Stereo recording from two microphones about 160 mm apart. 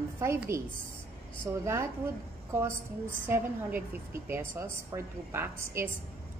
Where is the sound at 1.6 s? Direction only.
15° right (ahead or behind).